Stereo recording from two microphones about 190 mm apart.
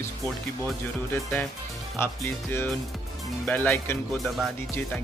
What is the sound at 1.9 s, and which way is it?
Speech, 10° left (ahead or behind).